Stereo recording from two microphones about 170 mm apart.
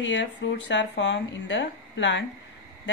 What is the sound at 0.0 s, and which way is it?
Speech, 90° left.